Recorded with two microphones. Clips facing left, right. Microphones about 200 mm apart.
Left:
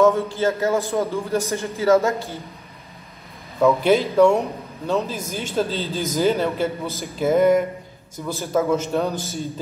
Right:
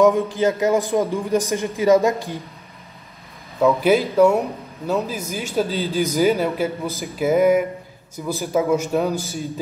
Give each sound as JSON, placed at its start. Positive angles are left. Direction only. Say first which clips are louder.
{"t": 0.0, "sound": "a man's voice", "louder": "right 1 dB", "side_deg": -15}
{"t": 3.6, "sound": "a man's voice", "louder": "even", "side_deg": 0}